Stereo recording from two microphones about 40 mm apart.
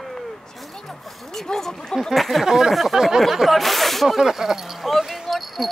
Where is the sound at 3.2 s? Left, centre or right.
Centre.